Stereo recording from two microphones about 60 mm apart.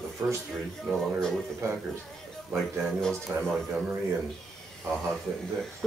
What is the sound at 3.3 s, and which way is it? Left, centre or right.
Speech, right.